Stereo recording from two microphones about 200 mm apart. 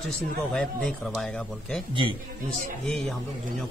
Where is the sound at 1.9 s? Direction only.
25° right (ahead or behind).